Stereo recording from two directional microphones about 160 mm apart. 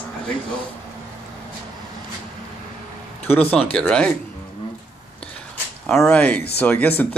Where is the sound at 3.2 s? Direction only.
10° left (ahead or behind).